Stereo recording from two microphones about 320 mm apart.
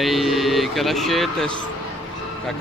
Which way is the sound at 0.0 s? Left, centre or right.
Centre.